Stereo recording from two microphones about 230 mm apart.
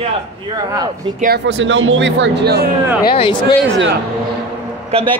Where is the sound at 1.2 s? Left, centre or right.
Right.